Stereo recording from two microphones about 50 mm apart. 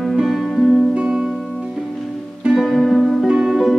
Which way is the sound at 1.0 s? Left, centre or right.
Centre.